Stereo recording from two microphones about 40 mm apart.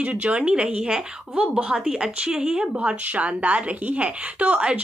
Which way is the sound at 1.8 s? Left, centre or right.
Centre.